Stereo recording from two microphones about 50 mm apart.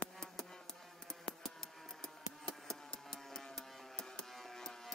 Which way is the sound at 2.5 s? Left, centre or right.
Centre.